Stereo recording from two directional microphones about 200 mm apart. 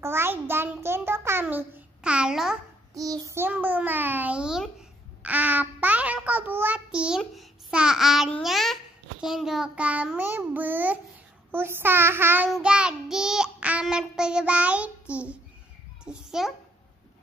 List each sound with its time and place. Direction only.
0.0 s a child's voice: 10° right (ahead or behind)
2.9 s a child's voice: 15° right (ahead or behind)
5.2 s child singing: 10° right (ahead or behind)
9.2 s a child's voice: centre (ahead or behind)
12.4 s child singing: 5° right (ahead or behind)
16.0 s a child's voice: 5° right (ahead or behind)